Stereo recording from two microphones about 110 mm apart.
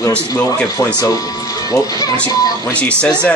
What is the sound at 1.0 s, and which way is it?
Speech, 30° left (ahead or behind).